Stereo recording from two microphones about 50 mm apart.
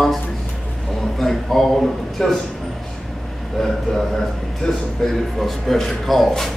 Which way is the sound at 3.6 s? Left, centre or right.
Centre.